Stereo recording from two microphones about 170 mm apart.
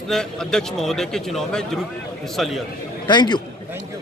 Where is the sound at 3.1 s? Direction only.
25° left (ahead or behind).